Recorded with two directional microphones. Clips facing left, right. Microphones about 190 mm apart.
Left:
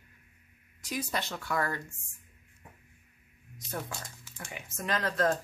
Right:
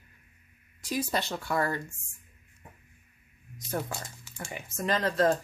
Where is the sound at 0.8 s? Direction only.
30° right (ahead or behind).